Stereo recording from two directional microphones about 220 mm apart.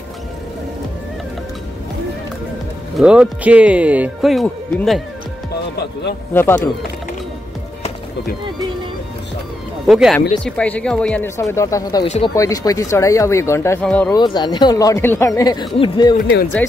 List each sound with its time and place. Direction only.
3.0 s speech: 5° right (ahead or behind)
6.3 s speech: 10° left (ahead or behind)
9.8 s speech: centre (ahead or behind)
14.1 s speech: 20° left (ahead or behind)